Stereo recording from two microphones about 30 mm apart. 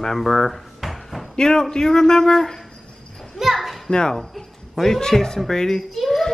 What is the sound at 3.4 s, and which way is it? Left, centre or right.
Children playing, centre.